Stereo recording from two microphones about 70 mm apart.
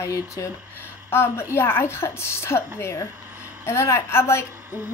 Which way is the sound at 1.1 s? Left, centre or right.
Left.